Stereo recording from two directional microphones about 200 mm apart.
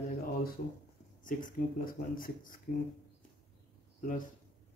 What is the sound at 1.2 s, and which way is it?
Speech, 40° left (ahead or behind).